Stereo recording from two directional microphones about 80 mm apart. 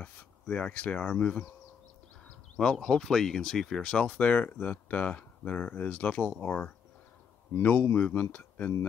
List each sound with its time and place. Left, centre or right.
0.0 s speech: centre
2.5 s speech: centre